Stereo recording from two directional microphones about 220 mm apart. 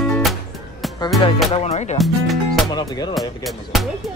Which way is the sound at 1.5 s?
30° left (ahead or behind).